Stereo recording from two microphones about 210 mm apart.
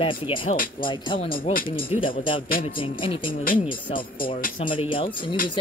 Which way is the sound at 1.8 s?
25° left (ahead or behind).